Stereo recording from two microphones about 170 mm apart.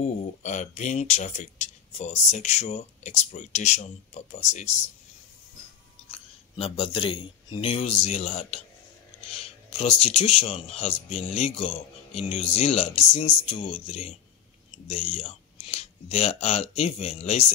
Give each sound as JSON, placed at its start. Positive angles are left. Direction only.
{"t": 0.0, "sound": "speech", "side_deg": 45}
{"t": 6.5, "sound": "speech", "side_deg": 30}